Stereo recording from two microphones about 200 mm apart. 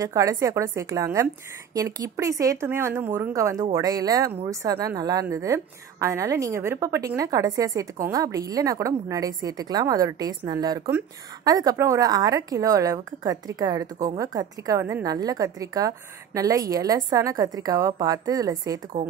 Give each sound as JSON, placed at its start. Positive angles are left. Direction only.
{"t": 0.0, "sound": "a woman's voice", "side_deg": -15}